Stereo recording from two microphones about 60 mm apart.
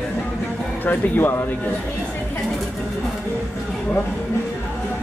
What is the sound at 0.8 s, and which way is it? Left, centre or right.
Speech, left.